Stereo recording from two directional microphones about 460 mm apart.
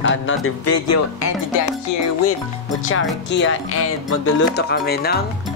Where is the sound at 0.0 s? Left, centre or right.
Left.